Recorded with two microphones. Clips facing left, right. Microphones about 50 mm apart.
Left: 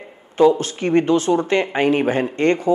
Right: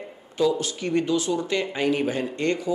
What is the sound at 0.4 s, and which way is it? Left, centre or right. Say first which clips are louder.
A man's voice: left 8 dB; left.